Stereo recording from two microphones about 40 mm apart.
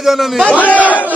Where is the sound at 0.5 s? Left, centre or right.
Left.